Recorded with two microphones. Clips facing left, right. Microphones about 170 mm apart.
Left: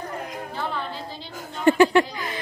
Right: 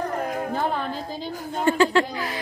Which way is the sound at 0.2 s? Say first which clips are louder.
Right 6 dB; 55° right (ahead or behind).